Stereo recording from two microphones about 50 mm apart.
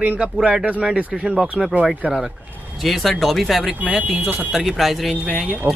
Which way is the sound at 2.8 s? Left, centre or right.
Centre.